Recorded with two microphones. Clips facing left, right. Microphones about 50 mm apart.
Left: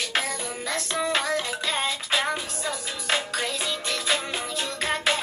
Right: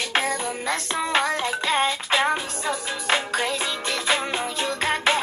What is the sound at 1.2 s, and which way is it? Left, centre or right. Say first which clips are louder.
Music: right 3 dB; right.